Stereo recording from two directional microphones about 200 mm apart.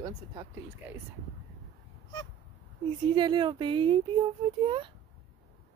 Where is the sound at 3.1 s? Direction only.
25° right (ahead or behind).